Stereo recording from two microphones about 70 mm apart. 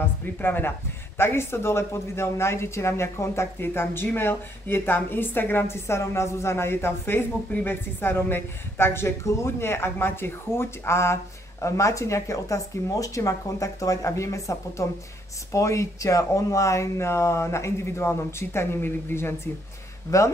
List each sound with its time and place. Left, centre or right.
0.0 s speech: left
20.1 s speech: left